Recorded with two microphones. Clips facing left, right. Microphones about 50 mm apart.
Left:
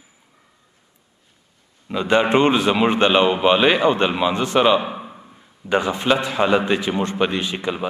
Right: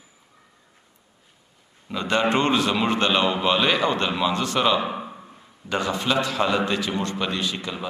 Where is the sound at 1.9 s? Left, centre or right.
Centre.